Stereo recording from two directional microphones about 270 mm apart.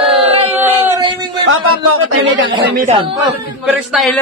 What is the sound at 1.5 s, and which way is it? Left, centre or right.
A man's voice, right.